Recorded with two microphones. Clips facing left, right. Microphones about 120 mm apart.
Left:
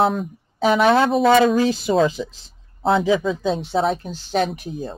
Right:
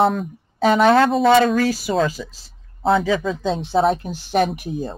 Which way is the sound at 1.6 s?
20° left (ahead or behind).